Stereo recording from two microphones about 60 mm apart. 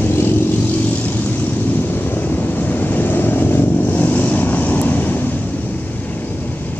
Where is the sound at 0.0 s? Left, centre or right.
Left.